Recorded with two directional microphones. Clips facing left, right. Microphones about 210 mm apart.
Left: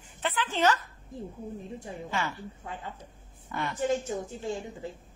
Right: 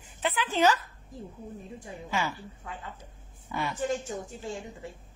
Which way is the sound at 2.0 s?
10° right (ahead or behind).